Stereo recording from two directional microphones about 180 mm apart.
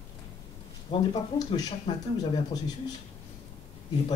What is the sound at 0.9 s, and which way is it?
Speech, 20° left (ahead or behind).